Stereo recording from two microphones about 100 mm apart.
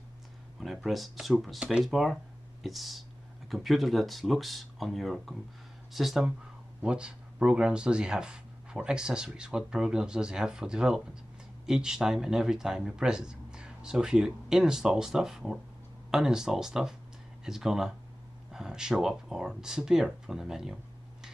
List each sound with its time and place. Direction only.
0.6 s speech: centre (ahead or behind)